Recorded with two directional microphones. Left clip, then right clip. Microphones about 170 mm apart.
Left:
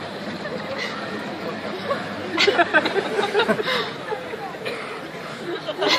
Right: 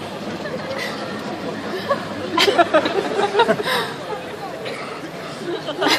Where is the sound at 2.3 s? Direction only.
50° right (ahead or behind).